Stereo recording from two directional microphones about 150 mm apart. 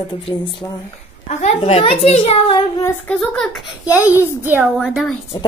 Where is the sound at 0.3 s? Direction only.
30° left (ahead or behind).